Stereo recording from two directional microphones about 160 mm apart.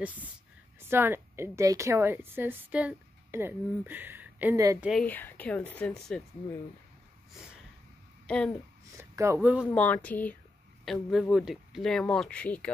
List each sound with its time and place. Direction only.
0.0 s a woman's voice: 10° right (ahead or behind)
5.0 s speech: 10° left (ahead or behind)
8.9 s speech: 15° right (ahead or behind)
9.8 s speech: 10° left (ahead or behind)
10.9 s speech: centre (ahead or behind)